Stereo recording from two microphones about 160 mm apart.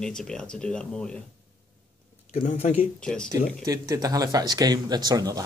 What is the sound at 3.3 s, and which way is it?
Speech, 20° right (ahead or behind).